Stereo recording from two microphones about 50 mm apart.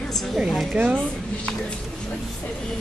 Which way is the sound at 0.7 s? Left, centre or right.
Right.